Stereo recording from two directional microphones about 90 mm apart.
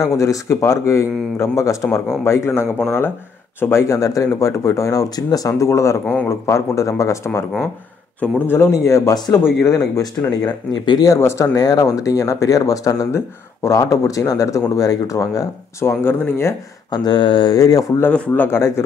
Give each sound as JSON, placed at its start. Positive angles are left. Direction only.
{"t": 0.0, "sound": "speech", "side_deg": 35}
{"t": 8.2, "sound": "speech", "side_deg": 20}
{"t": 8.7, "sound": "speech", "side_deg": 35}
{"t": 11.1, "sound": "speech", "side_deg": 30}
{"t": 11.5, "sound": "speech", "side_deg": 45}
{"t": 13.1, "sound": "speech", "side_deg": 30}
{"t": 16.9, "sound": "speech", "side_deg": 55}
{"t": 17.6, "sound": "speech", "side_deg": 40}
{"t": 18.0, "sound": "speech", "side_deg": 15}